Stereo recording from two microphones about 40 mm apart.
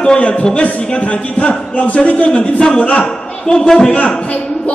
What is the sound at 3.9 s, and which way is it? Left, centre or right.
Speech, left.